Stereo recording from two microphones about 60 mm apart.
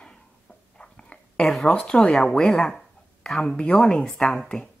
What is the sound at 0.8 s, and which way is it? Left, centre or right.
Dog, centre.